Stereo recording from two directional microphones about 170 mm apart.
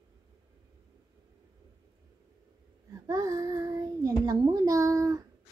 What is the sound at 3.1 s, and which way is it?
Child singing, 20° right (ahead or behind).